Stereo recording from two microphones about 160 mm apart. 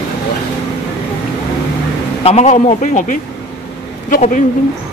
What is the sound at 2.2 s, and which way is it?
A man's voice, 40° left (ahead or behind).